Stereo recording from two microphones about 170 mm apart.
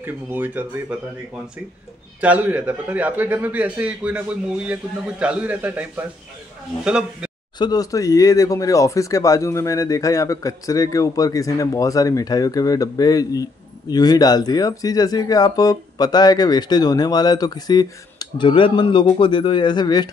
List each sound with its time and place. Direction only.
0.0 s a man's voice: 10° right (ahead or behind)
2.2 s a man's voice: 10° right (ahead or behind)
7.5 s speech: 25° left (ahead or behind)